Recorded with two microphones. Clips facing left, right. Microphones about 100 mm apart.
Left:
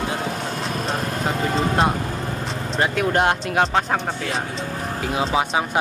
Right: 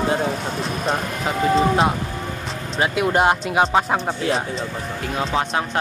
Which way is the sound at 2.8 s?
5° right (ahead or behind).